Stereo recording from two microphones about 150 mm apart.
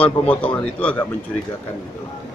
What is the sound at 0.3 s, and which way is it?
Speech, 10° left (ahead or behind).